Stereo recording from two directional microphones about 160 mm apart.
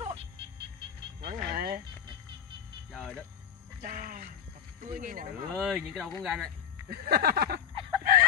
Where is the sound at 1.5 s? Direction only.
75° right (ahead or behind).